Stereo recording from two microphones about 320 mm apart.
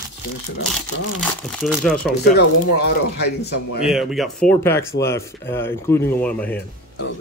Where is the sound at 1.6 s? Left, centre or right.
Centre.